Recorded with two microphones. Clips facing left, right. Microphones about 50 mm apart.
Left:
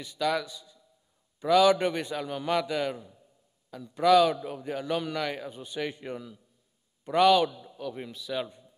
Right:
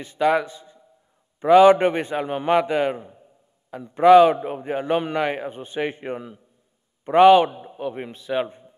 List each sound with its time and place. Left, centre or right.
0.0 s a man's voice: right